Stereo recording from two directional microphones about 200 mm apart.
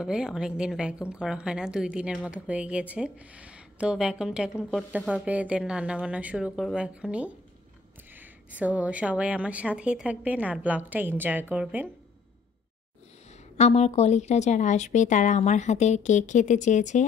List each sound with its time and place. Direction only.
0.0 s a woman's voice: 5° right (ahead or behind)
13.6 s speech: 35° left (ahead or behind)